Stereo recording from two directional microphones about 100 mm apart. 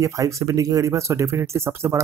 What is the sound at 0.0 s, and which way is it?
Speech, 35° right (ahead or behind).